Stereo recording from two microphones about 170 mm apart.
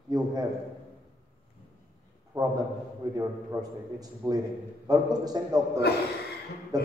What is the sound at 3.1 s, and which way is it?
A man's voice, 20° right (ahead or behind).